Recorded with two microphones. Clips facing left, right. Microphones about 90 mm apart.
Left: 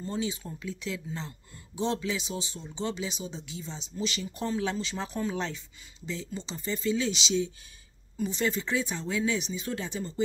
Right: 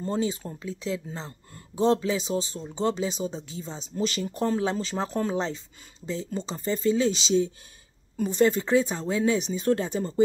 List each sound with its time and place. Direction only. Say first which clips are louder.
0.0 s speech: right 5 dB; 40° right (ahead or behind)